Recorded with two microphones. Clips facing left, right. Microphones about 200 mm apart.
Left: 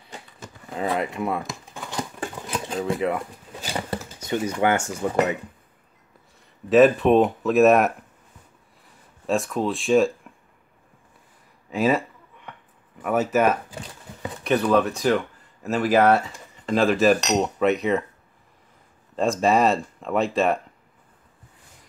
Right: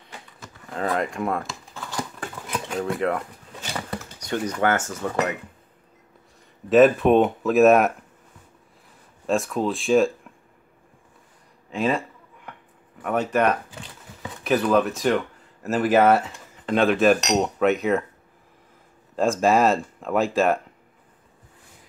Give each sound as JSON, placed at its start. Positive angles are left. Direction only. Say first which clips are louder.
{"t": 0.1, "sound": "a sound", "louder": "left 3 dB", "side_deg": 20}
{"t": 0.7, "sound": "speech", "louder": "even", "side_deg": 10}
{"t": 1.4, "sound": "a sound", "louder": "left 1 dB", "side_deg": 15}
{"t": 2.8, "sound": "speech", "louder": "even", "side_deg": 0}
{"t": 3.7, "sound": "a sound", "louder": "left 3 dB", "side_deg": 25}
{"t": 4.3, "sound": "speech", "louder": "left 1 dB", "side_deg": 10}
{"t": 6.7, "sound": "speech", "louder": "even", "side_deg": 0}
{"t": 9.2, "sound": "speech", "louder": "even", "side_deg": 0}
{"t": 11.7, "sound": "speech", "louder": "left 2 dB", "side_deg": 5}
{"t": 13.0, "sound": "speech", "louder": "left 1 dB", "side_deg": 5}
{"t": 19.4, "sound": "speech", "louder": "even", "side_deg": 0}